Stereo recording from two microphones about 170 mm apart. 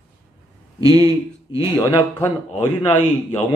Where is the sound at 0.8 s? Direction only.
20° right (ahead or behind).